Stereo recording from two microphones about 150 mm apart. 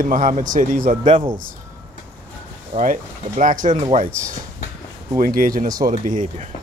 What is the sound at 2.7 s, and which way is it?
Speech, 55° right (ahead or behind).